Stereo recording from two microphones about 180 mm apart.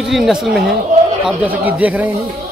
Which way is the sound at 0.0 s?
Centre (ahead or behind).